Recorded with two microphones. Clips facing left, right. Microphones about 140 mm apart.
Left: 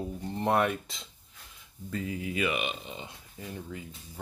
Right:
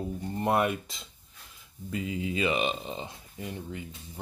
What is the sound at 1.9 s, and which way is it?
Speech, 15° right (ahead or behind).